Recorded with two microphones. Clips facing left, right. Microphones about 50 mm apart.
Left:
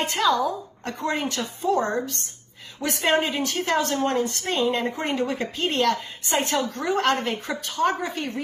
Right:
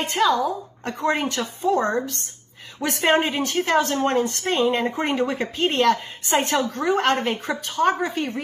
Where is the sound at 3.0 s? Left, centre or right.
Right.